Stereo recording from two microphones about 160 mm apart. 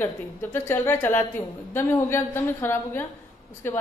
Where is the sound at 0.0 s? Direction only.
15° left (ahead or behind).